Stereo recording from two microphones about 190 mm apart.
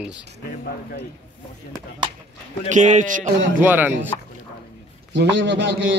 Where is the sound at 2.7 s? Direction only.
40° right (ahead or behind).